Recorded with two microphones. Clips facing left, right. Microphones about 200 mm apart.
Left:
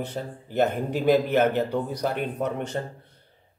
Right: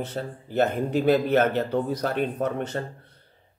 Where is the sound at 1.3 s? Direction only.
15° left (ahead or behind).